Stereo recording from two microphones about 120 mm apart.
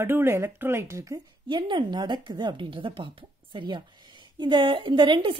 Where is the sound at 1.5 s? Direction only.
40° right (ahead or behind).